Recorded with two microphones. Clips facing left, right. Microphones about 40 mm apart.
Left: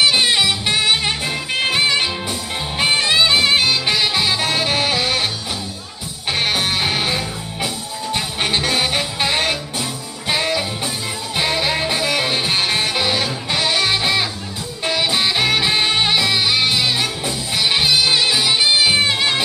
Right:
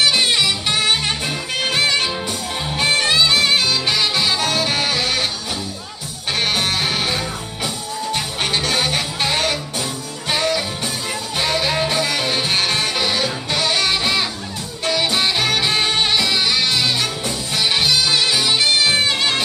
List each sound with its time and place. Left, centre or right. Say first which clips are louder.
0.0 s music: left 1 dB; centre
6.3 s music: even; centre